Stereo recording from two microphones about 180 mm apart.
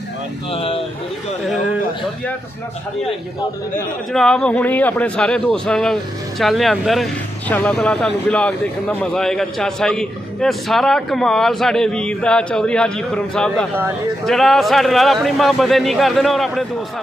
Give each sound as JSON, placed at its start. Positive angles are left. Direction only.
{"t": 0.5, "sound": "speech", "side_deg": 30}
{"t": 3.7, "sound": "speech", "side_deg": 5}